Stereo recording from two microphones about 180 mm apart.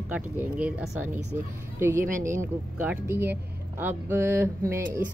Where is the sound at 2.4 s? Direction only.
10° right (ahead or behind).